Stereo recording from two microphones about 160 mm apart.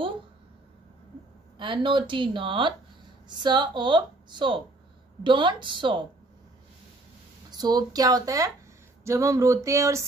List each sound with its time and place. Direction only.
1.6 s a woman's voice: 30° right (ahead or behind)
7.5 s a woman's voice: 25° right (ahead or behind)
9.0 s a sound: 20° right (ahead or behind)